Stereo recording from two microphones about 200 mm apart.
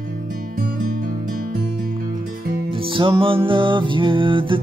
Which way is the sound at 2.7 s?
25° right (ahead or behind).